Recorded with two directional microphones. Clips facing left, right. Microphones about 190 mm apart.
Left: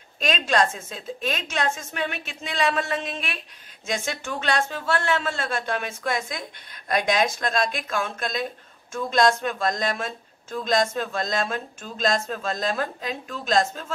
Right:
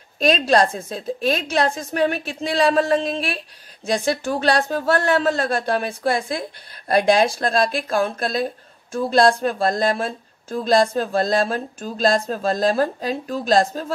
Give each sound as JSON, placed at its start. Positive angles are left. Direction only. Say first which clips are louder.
{"t": 0.2, "sound": "speech", "louder": "right 6 dB", "side_deg": -35}